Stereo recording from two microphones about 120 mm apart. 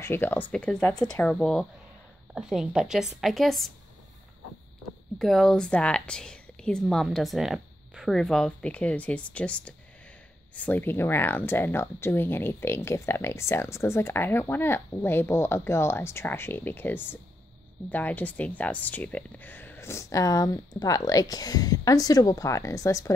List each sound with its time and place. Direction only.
0.0 s a woman's voice: 20° left (ahead or behind); by 3.7 s centre (ahead or behind)
5.2 s a woman's voice: 5° left (ahead or behind); by 23.1 s 25° left (ahead or behind)